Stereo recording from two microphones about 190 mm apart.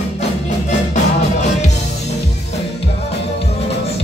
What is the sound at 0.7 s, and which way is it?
Music, 35° left (ahead or behind).